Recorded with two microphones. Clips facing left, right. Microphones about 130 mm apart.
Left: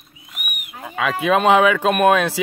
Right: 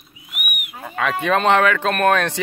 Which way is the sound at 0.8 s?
5° left (ahead or behind).